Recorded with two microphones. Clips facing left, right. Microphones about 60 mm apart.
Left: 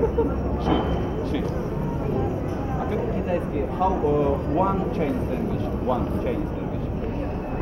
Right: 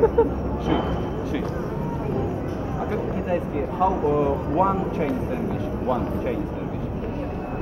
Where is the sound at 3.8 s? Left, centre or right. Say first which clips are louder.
Right 1 dB; centre.